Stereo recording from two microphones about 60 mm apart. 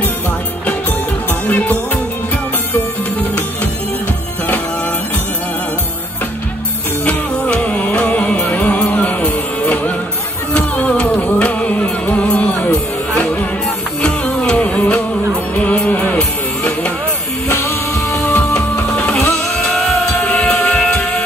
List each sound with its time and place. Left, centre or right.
1.5 s music: left
7.5 s music: centre
14.0 s music: centre
16.2 s music: centre
17.5 s music: left
18.9 s music: centre
19.8 s vehicle: centre
20.6 s music: centre